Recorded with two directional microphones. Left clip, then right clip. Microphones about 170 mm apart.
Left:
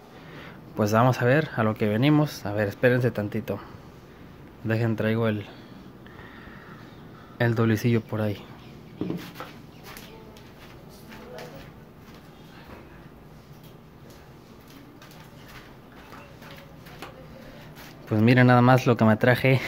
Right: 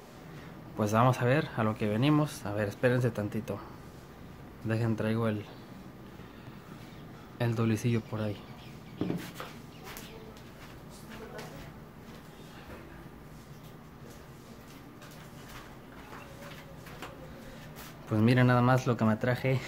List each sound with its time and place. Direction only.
0.7 s speech: 25° left (ahead or behind)
4.6 s speech: 25° left (ahead or behind)
7.3 s speech: 25° left (ahead or behind)
18.0 s speech: 20° left (ahead or behind)